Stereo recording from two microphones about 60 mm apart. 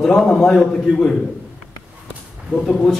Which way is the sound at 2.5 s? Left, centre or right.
Centre.